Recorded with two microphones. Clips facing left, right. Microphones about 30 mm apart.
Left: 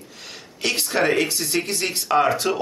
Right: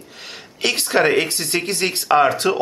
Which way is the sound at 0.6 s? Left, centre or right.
Right.